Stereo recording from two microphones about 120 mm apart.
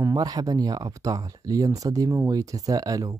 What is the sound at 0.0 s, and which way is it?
Speech, 30° right (ahead or behind).